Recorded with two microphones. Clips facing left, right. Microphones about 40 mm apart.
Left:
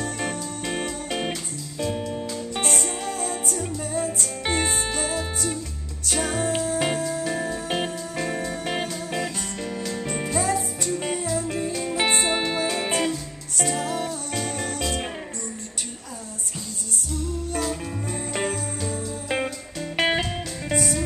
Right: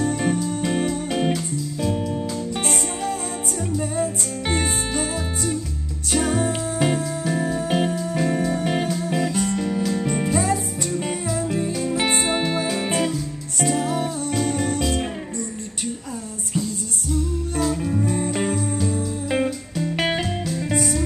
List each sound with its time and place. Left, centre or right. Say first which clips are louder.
0.0 s music: right 7 dB; centre
17.6 s music: right 8 dB; centre